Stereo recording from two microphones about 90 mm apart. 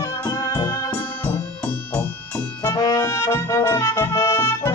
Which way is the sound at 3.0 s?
30° left (ahead or behind).